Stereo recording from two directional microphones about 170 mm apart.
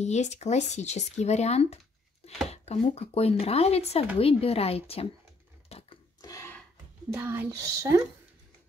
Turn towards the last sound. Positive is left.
turn(degrees=-15)  # may be behind; listen again after turning